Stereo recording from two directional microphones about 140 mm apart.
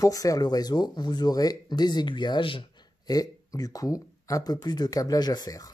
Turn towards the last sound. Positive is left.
turn(degrees=25)  # may be behind; listen again after turning